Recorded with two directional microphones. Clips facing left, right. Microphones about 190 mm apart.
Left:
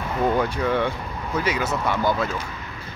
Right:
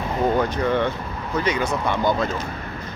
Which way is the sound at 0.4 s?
10° left (ahead or behind).